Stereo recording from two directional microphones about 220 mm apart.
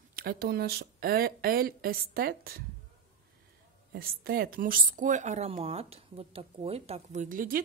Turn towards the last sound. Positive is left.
turn(degrees=-40)  # may be behind; listen again after turning